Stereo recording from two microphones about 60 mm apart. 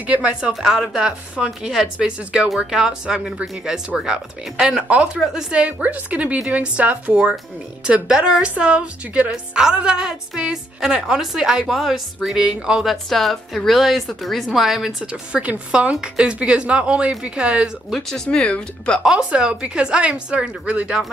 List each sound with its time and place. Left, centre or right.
0.0 s a woman's voice: right
12.8 s a woman's voice: centre
17.9 s speech: centre
19.0 s speech: centre